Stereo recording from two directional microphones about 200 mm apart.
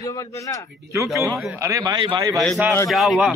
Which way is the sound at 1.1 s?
15° right (ahead or behind).